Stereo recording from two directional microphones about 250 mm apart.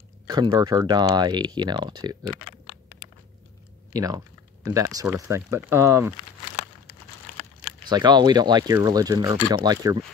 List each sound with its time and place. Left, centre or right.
0.3 s speech: centre
3.9 s speech: centre
7.9 s speech: centre